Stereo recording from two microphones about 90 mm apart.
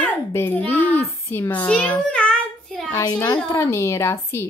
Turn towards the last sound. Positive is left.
turn(degrees=30)  # may be behind; listen again after turning